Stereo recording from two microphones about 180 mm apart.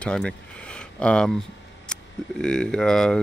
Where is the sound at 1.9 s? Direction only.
5° left (ahead or behind).